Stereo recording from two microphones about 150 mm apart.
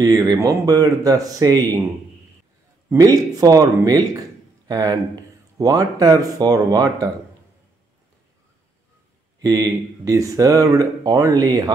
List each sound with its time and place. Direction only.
0.0 s speech: 25° right (ahead or behind)
2.9 s a man's voice: 25° right (ahead or behind)
9.4 s speech: 25° right (ahead or behind)